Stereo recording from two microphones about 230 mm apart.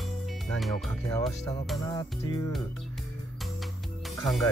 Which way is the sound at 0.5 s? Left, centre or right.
Centre.